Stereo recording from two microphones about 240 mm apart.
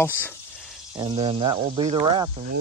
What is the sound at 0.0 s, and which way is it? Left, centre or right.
Speech, centre.